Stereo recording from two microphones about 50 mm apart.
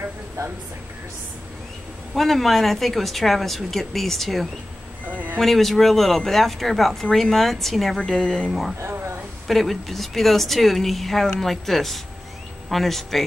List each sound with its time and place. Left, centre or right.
2.1 s speech: centre
5.1 s vehicle: right
5.4 s speech: centre
8.8 s a sound: right
9.5 s speech: centre